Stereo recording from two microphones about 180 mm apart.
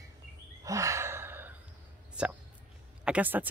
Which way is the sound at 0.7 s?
15° right (ahead or behind).